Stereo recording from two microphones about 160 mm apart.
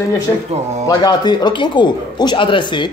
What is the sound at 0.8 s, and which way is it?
A man's voice, 25° left (ahead or behind).